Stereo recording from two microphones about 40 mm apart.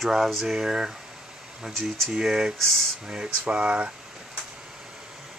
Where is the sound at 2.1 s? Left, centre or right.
Centre.